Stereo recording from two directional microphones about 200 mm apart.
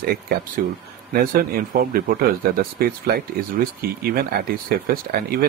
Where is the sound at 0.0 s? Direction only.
50° right (ahead or behind).